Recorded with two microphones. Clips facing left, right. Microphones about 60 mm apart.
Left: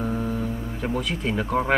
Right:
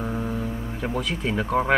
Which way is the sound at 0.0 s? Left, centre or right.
Centre.